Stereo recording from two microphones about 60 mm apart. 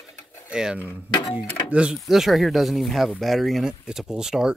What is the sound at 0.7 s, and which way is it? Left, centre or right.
Speech, right.